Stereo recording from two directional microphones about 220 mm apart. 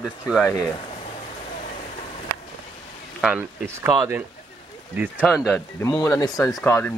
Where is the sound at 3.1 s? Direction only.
5° right (ahead or behind).